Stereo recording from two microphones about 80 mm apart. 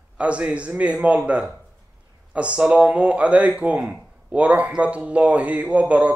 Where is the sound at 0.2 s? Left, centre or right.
Centre.